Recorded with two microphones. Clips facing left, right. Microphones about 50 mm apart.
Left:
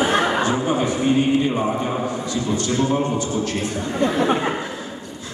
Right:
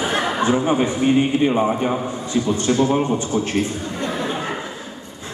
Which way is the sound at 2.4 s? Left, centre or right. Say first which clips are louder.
Right 2 dB; right.